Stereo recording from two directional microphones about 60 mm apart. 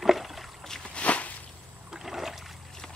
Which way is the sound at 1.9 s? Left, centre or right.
Centre.